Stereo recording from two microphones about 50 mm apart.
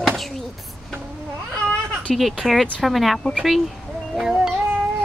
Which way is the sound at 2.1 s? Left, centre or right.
Centre.